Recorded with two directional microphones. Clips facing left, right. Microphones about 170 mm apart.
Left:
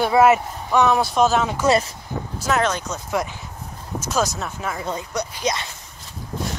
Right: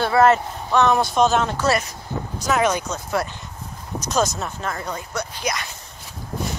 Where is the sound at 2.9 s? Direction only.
15° left (ahead or behind).